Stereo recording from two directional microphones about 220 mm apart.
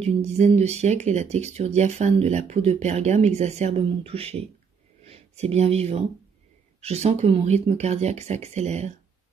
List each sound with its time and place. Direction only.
0.0 s speech: 30° right (ahead or behind)